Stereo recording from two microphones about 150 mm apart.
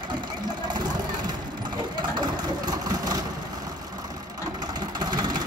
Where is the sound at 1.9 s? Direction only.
30° right (ahead or behind).